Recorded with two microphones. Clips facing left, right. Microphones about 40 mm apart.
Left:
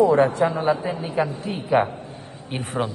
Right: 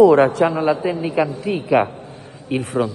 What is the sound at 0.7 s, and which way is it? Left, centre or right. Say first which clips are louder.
Speech: right 4 dB; right.